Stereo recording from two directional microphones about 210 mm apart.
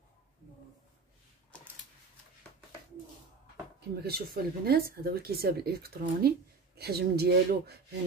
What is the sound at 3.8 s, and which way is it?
Speech, 50° right (ahead or behind).